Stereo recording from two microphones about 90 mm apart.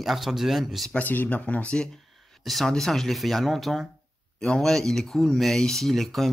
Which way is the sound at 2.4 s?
Centre (ahead or behind).